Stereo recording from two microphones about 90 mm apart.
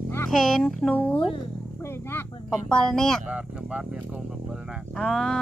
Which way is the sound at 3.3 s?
10° right (ahead or behind).